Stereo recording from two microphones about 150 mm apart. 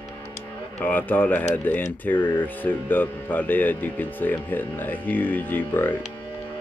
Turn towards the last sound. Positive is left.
turn(degrees=10)  # may be behind; listen again after turning